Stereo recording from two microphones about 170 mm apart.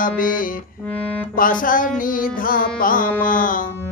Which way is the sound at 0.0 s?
55° left (ahead or behind).